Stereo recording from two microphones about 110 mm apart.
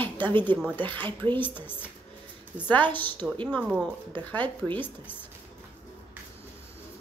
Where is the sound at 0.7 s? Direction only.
15° left (ahead or behind).